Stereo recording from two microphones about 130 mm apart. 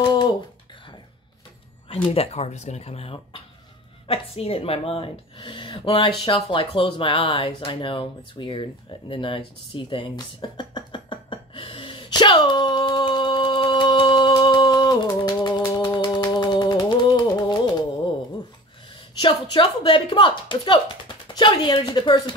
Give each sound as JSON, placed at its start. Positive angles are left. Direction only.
{"t": 2.1, "sound": "a woman's voice", "side_deg": 55}
{"t": 9.8, "sound": "a sound", "side_deg": 40}
{"t": 15.8, "sound": "music", "side_deg": 35}
{"t": 19.2, "sound": "speech", "side_deg": 40}